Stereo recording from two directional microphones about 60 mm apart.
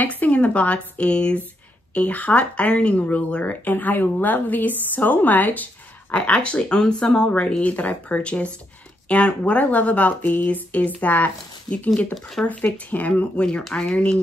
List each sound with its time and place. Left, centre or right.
0.0 s speech: left
12.4 s speech: centre
12.9 s speech: left